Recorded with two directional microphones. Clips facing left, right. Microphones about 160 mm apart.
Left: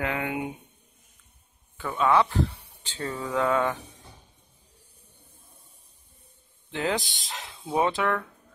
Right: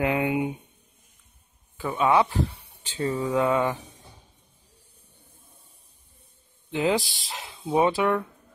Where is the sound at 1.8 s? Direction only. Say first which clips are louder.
Right 1 dB; 15° right (ahead or behind).